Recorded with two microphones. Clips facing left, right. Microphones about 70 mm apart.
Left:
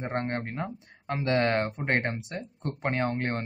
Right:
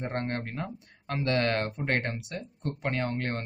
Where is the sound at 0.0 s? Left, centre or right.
Left.